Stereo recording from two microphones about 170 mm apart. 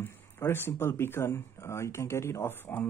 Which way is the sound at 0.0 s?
15° left (ahead or behind).